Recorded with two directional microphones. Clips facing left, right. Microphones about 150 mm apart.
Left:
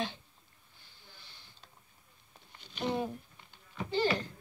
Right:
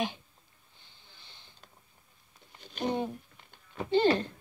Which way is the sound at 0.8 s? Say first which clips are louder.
Left 1 dB; 20° right (ahead or behind).